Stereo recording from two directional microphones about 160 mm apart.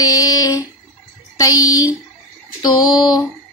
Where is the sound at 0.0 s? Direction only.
20° left (ahead or behind).